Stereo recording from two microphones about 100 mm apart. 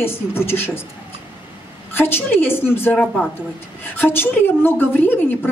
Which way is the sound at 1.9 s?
20° left (ahead or behind).